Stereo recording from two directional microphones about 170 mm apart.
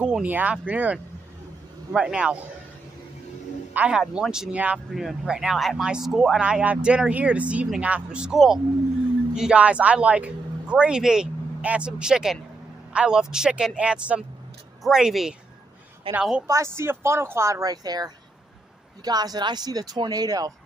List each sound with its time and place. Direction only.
0.0 s speech: 10° right (ahead or behind)
3.7 s speech: 5° right (ahead or behind)
16.4 s speech: 15° right (ahead or behind)